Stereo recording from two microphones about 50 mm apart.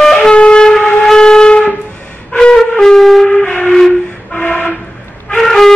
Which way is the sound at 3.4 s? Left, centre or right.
Left.